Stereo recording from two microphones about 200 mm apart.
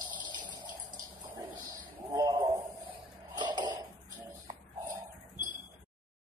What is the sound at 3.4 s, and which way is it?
Cough, 20° right (ahead or behind).